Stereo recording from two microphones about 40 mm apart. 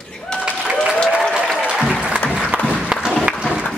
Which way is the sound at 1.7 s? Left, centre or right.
Right.